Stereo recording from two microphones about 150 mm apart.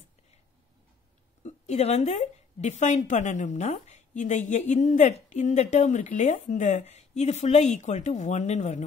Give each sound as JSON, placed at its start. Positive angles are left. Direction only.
{"t": 1.4, "sound": "a woman's voice", "side_deg": 50}